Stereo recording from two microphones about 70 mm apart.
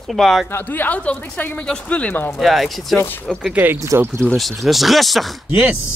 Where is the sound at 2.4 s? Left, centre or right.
Centre.